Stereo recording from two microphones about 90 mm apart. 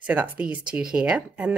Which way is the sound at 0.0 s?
15° right (ahead or behind).